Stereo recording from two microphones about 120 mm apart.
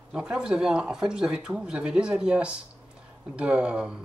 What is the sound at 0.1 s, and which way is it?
Speech, 5° right (ahead or behind).